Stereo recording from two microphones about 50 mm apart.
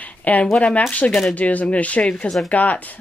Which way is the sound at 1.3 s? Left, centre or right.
Left.